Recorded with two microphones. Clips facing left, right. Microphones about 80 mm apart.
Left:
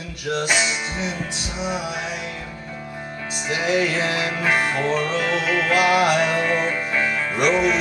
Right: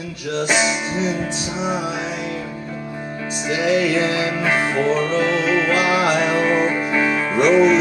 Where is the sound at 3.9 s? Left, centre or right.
Right.